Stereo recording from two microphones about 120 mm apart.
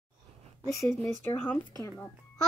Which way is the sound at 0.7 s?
25° left (ahead or behind).